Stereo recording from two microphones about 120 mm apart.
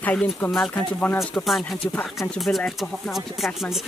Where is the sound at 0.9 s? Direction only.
Centre (ahead or behind).